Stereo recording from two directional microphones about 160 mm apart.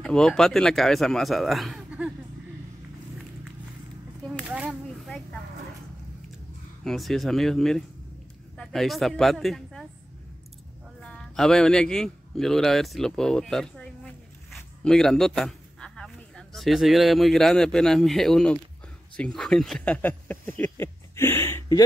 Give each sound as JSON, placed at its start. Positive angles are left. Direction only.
{"t": 0.0, "sound": "speech", "side_deg": 5}
{"t": 4.5, "sound": "a sound", "side_deg": 0}
{"t": 6.8, "sound": "a man's voice", "side_deg": 0}
{"t": 11.0, "sound": "speech", "side_deg": 5}